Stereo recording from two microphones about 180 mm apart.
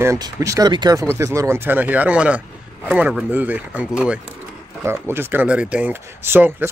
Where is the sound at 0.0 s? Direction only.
15° right (ahead or behind).